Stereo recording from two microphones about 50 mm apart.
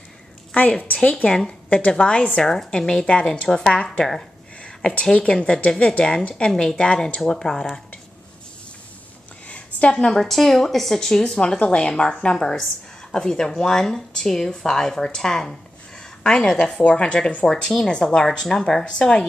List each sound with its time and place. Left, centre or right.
0.6 s a woman's voice: left
2.4 s a woman's voice: centre
5.4 s a woman's voice: left; by 6.8 s centre
6.8 s a woman's voice: left
7.2 s speech: centre
9.5 s a sound: left
10.1 s a woman's voice: centre
17.5 s speech: centre